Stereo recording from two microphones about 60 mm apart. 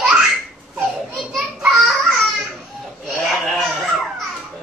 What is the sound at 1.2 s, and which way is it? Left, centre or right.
Children playing, centre.